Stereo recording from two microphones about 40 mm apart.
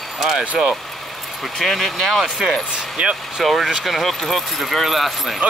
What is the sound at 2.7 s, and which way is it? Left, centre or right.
Speech, right.